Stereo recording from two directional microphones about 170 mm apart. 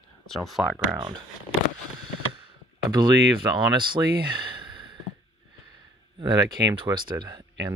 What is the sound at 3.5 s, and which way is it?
Speech, 30° right (ahead or behind).